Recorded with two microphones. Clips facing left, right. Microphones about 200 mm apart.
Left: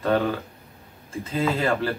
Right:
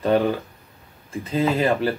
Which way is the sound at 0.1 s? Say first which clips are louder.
Right 4 dB; 15° right (ahead or behind).